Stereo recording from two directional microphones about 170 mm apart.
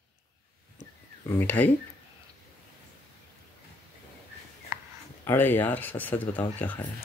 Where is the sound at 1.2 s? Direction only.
10° left (ahead or behind).